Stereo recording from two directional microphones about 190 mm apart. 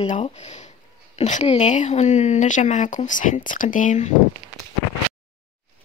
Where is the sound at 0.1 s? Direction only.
35° left (ahead or behind).